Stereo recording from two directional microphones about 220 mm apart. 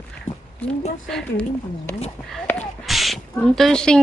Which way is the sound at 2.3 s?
Centre (ahead or behind).